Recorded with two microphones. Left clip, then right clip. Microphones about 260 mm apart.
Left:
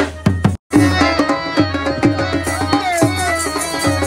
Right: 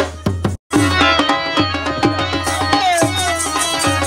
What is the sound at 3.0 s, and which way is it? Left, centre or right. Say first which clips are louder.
Music: even; centre.